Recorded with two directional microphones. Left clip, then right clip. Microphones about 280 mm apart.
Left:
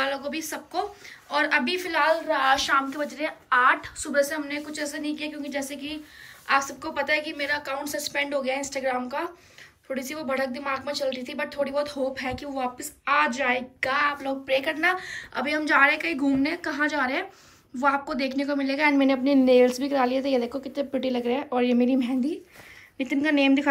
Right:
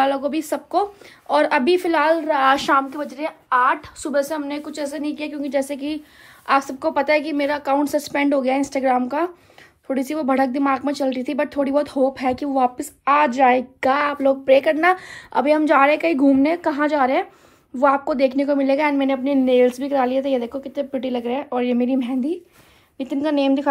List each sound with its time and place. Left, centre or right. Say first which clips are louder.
0.0 s a woman's voice: right 8 dB; centre
2.7 s a woman's voice: right 5 dB; centre